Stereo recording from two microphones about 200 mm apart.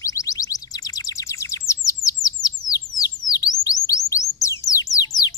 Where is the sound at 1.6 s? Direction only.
15° left (ahead or behind).